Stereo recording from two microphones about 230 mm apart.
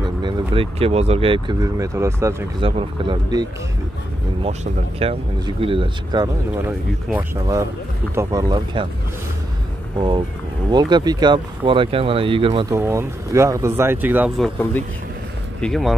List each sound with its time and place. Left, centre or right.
0.2 s speech: right
8.1 s speech: centre
9.9 s speech: centre
12.7 s speech: centre